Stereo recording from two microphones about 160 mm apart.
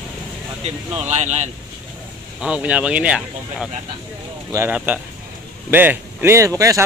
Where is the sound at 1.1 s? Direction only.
45° right (ahead or behind).